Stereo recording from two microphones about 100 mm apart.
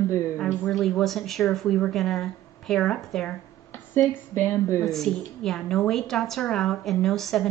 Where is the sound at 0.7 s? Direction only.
Centre (ahead or behind).